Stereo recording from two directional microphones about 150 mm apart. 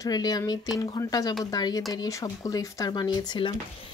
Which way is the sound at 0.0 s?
25° left (ahead or behind).